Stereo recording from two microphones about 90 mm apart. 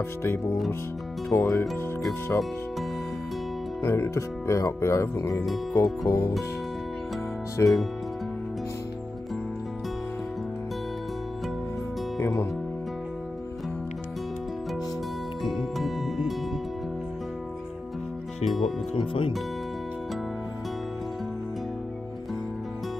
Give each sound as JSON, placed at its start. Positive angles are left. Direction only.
{"t": 0.2, "sound": "speech", "side_deg": 25}
{"t": 3.8, "sound": "speech", "side_deg": 25}
{"t": 5.4, "sound": "speech", "side_deg": 0}
{"t": 6.0, "sound": "speech", "side_deg": 25}
{"t": 7.6, "sound": "speech", "side_deg": 35}
{"t": 15.4, "sound": "music", "side_deg": 0}
{"t": 18.4, "sound": "music", "side_deg": 0}
{"t": 18.9, "sound": "speech", "side_deg": 80}